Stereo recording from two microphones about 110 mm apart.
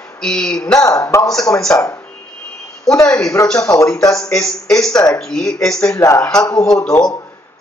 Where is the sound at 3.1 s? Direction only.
30° left (ahead or behind).